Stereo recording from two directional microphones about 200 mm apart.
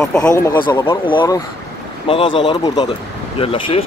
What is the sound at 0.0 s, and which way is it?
Speech, 5° left (ahead or behind).